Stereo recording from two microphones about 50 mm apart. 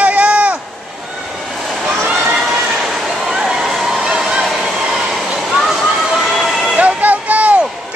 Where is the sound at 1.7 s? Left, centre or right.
Centre.